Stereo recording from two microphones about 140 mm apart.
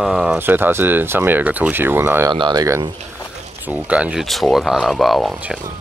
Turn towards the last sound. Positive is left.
turn(degrees=0)  # may be behind; listen again after turning